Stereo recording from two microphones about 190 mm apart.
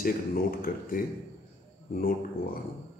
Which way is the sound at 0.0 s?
50° left (ahead or behind).